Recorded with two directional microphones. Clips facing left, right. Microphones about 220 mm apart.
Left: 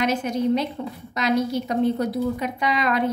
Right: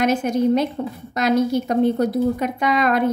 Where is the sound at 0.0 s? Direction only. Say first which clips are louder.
Right 4 dB; 50° right (ahead or behind).